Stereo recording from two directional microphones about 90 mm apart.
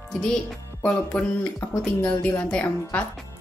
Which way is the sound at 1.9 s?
15° left (ahead or behind).